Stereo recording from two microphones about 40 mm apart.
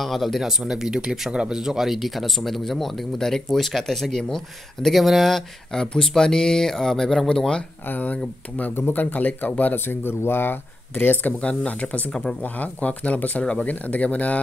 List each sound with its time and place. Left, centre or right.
0.0 s speech: centre
0.4 s speech: centre
5.7 s speech: centre
7.9 s speech: left
8.7 s speech: left
9.0 s speech: left
9.8 s speech: left
11.4 s speech: left
13.4 s speech: centre
13.7 s speech: left